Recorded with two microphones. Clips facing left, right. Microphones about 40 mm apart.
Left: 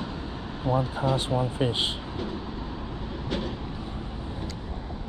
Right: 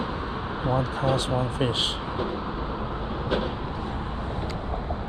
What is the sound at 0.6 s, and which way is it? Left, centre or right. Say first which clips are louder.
Speech: even; right.